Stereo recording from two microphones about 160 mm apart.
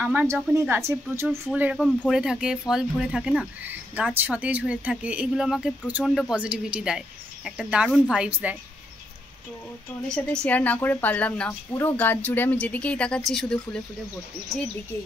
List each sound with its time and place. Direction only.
0.0 s speech: 10° right (ahead or behind)
10.0 s a woman's voice: 5° left (ahead or behind)